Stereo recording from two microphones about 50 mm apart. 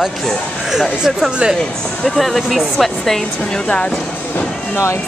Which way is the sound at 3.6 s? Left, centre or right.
Left.